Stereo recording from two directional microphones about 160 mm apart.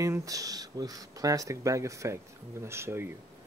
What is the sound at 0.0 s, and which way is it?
Speech, 20° right (ahead or behind).